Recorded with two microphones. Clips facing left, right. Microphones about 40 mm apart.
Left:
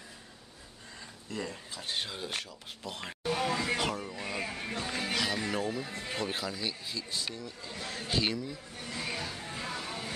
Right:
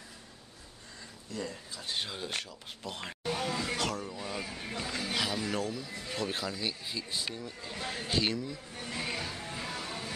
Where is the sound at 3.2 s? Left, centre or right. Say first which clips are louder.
Left 3 dB; centre.